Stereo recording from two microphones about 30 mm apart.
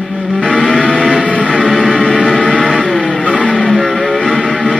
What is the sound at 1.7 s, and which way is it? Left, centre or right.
Music, centre.